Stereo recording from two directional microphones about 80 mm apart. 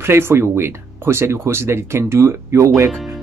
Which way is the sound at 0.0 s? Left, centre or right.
Right.